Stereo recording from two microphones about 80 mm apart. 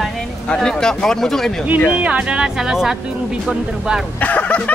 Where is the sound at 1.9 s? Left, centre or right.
Centre.